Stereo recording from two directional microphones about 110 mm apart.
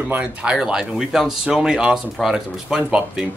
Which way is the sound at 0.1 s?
10° right (ahead or behind).